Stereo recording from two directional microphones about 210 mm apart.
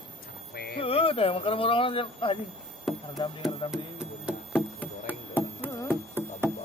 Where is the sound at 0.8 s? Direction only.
25° left (ahead or behind).